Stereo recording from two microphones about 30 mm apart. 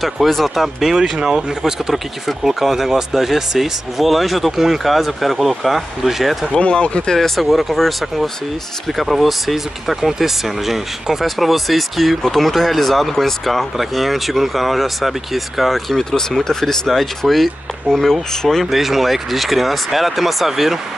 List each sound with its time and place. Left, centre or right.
0.0 s speech: centre
0.6 s speech: centre
0.9 s speech: centre
6.7 s speech: left
7.1 s speech: centre
13.7 s speech: centre
15.9 s speech: centre
18.0 s speech: centre
18.7 s speech: centre